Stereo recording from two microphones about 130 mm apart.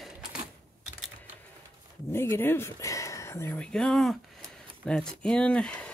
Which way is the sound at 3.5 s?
5° left (ahead or behind).